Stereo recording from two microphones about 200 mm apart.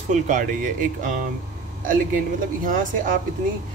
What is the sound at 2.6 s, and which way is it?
Speech, 40° right (ahead or behind).